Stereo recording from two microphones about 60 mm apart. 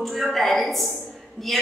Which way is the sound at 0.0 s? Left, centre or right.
Centre.